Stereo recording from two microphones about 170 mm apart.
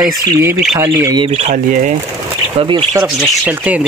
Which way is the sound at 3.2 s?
10° right (ahead or behind).